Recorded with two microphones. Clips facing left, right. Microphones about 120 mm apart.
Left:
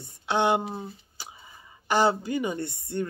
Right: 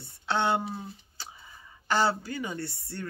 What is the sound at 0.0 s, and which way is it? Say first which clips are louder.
Speech: left 3 dB; 15° left (ahead or behind).